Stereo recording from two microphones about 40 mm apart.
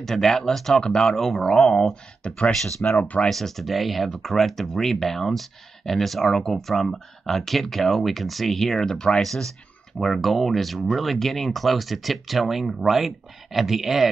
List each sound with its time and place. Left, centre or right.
0.0 s speech: centre
2.2 s speech: left
2.8 s speech: left
3.3 s speech: centre